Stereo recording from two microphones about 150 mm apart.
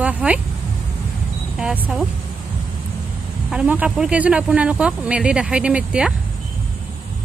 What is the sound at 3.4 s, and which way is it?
A man's voice, 10° right (ahead or behind).